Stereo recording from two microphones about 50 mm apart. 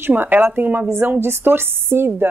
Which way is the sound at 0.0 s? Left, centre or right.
Right.